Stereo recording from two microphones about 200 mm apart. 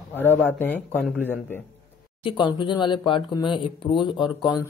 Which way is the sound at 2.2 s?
25° left (ahead or behind).